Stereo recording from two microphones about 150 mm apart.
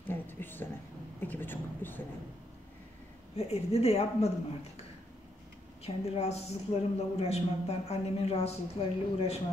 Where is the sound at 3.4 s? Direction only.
45° left (ahead or behind).